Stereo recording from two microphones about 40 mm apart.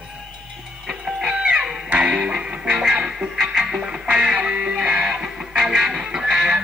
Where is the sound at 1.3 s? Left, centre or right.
Right.